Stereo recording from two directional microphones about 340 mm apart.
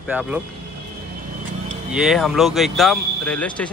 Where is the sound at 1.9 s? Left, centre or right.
Centre.